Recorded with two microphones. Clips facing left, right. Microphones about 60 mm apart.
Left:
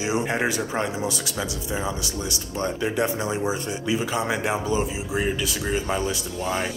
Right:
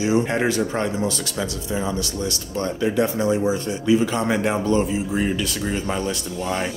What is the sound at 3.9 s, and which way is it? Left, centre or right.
Speech, centre.